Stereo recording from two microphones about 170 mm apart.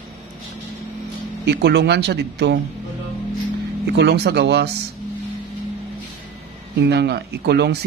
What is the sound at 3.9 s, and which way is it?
Speech, 80° right.